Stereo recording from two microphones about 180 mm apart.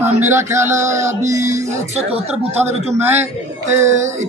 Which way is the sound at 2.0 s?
35° right (ahead or behind).